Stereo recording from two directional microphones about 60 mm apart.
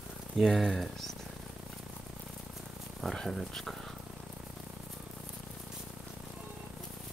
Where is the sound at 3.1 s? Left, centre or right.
Centre.